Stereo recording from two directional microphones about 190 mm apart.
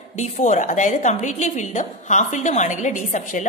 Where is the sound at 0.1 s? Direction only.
40° left (ahead or behind).